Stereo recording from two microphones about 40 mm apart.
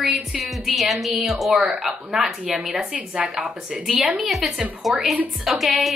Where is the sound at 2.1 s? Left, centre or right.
Centre.